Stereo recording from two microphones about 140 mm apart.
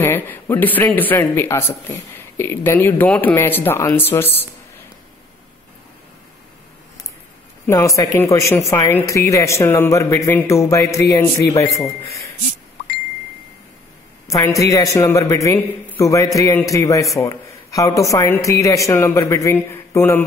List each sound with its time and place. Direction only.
0.0 s speech: 15° left (ahead or behind)
7.6 s a man's voice: 20° left (ahead or behind)
14.2 s a man's voice: 20° left (ahead or behind)